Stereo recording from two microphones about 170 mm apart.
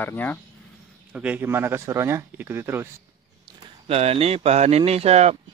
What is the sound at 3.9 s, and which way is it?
Speech, 35° right (ahead or behind).